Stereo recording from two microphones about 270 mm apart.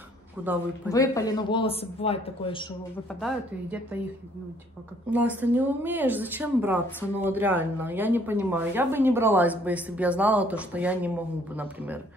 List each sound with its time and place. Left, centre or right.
0.4 s speech: centre
0.9 s a man's voice: centre
3.2 s speech: centre
5.1 s speech: centre